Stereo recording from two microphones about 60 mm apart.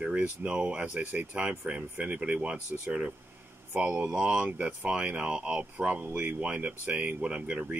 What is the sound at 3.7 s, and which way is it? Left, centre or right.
Speech, right.